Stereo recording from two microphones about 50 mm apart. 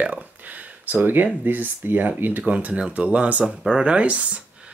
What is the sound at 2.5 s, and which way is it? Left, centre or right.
Speech, right.